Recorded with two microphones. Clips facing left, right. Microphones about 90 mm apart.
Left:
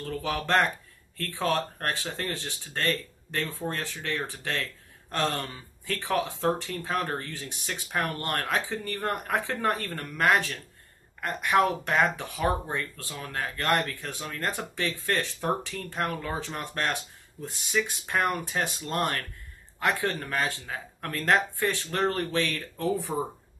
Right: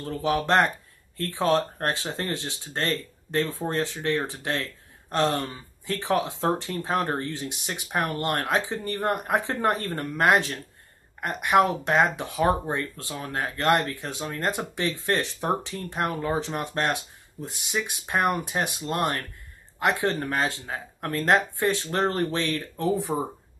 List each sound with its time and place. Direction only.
0.0 s speech: 20° right (ahead or behind)